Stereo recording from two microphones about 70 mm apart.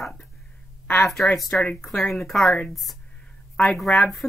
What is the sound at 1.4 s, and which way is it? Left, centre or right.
Speech, centre.